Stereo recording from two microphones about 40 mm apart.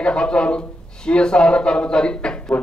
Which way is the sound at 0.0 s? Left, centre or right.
Left.